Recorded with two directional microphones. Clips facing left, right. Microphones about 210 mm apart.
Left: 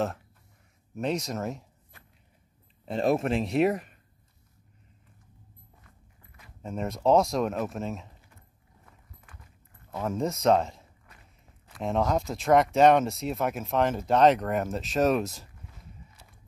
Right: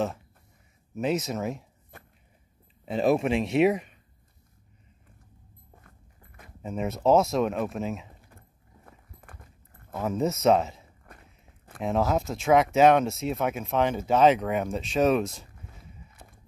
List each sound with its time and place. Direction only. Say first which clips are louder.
0.9 s speech: right 2 dB; 5° right (ahead or behind)
2.8 s speech: right 2 dB; centre (ahead or behind)
5.8 s a sound: right 3 dB; 50° right (ahead or behind)
6.6 s speech: right 1 dB; centre (ahead or behind)
8.8 s walk: right 5 dB; 50° right (ahead or behind)
9.9 s speech: right 2 dB; 5° right (ahead or behind)
16.2 s mechanisms: right 5 dB; 55° right (ahead or behind)